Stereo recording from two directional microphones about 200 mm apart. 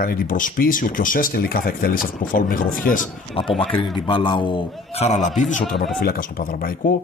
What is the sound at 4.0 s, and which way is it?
Speech, 25° left (ahead or behind).